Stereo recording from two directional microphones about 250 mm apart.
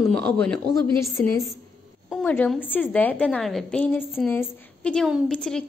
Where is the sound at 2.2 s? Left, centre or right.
Centre.